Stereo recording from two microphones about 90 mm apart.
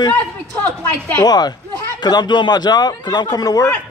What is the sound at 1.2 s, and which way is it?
A man's voice, 50° left (ahead or behind).